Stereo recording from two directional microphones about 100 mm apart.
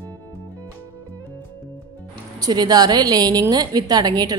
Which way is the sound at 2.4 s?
45° right (ahead or behind).